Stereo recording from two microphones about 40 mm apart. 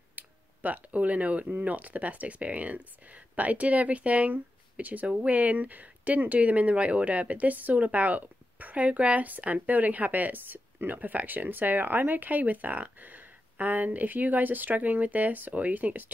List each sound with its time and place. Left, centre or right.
0.1 s finger snapping: right
1.6 s speech: right
5.0 s speech: right